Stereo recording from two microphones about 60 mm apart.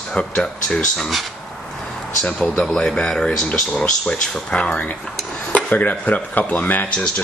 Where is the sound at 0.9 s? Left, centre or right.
Centre.